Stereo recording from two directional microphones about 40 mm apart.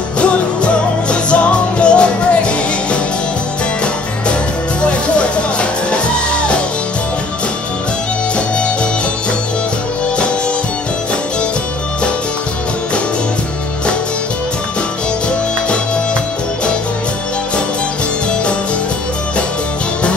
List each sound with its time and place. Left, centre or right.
0.2 s music: left
4.8 s music: left